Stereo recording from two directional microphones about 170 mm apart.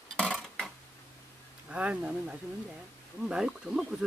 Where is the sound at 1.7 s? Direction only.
5° right (ahead or behind).